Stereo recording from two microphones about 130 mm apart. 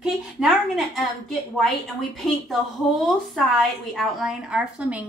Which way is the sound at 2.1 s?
Centre (ahead or behind).